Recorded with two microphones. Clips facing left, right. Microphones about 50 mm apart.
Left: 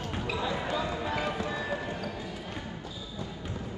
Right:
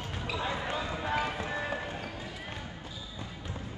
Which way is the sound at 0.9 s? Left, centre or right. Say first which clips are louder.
Even; right.